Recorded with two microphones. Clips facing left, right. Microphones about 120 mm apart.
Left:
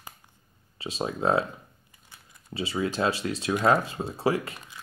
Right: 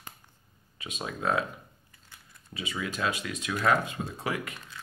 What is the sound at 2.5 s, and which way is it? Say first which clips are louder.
Speech: left 6 dB; 30° left (ahead or behind).